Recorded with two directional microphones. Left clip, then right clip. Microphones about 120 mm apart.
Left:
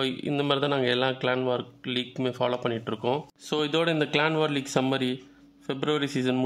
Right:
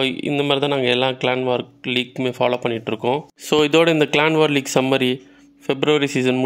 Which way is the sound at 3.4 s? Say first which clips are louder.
Right 11 dB; 45° right (ahead or behind).